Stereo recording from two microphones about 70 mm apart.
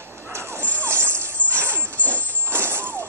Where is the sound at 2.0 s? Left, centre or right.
Right.